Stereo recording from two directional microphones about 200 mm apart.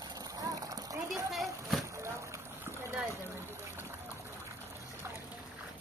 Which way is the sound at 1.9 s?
15° right (ahead or behind).